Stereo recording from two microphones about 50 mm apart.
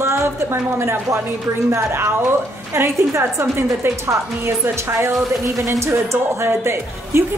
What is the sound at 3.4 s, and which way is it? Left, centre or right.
A woman's voice, right.